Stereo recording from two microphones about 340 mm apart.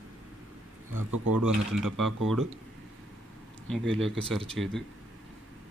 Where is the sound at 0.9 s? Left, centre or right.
Right.